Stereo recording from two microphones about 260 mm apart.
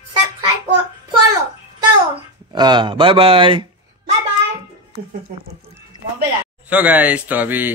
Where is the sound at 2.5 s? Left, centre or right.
Centre.